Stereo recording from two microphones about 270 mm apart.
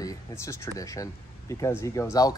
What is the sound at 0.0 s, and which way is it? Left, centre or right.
Speech, centre.